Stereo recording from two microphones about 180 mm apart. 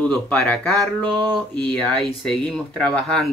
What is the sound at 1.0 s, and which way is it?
Speech, 25° right (ahead or behind).